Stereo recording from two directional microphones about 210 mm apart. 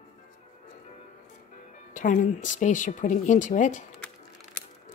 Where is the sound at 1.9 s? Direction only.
35° left (ahead or behind).